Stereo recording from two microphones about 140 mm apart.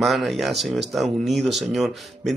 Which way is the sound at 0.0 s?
Centre (ahead or behind).